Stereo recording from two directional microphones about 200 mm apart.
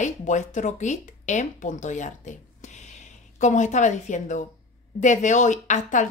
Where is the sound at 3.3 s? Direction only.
35° left (ahead or behind).